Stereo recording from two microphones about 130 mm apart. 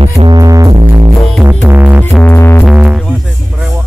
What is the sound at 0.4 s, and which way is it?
Music, 25° right (ahead or behind).